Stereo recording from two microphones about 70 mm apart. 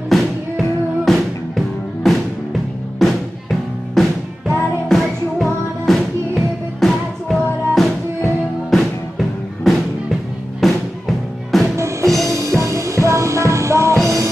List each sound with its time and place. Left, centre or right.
0.1 s music: centre
10.6 s music: centre
11.7 s music: right